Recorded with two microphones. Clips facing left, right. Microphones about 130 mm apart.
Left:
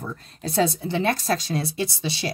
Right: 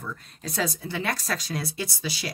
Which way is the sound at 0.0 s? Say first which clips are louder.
Left 4 dB; 30° left (ahead or behind).